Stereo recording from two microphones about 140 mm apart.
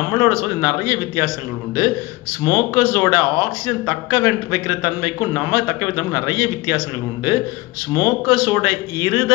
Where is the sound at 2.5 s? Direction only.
15° right (ahead or behind).